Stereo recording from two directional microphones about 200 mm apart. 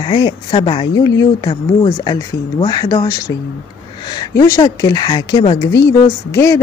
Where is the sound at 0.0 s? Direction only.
25° left (ahead or behind).